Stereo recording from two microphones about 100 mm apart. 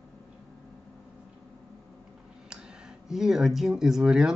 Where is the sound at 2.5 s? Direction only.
5° right (ahead or behind).